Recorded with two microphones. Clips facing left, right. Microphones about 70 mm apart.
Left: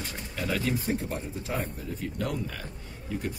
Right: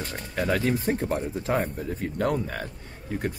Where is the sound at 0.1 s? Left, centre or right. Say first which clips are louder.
Right 6 dB; right.